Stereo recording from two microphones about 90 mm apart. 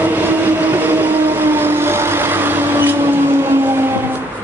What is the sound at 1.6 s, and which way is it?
Vehicle, 25° right (ahead or behind).